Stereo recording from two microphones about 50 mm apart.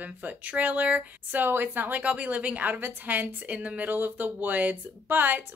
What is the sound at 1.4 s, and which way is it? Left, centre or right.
A woman's voice, right.